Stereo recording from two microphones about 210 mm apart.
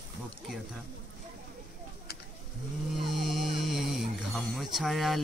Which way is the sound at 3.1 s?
Centre (ahead or behind).